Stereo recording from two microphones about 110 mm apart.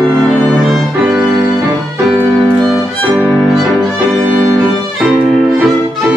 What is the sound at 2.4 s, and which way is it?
Violin, centre (ahead or behind).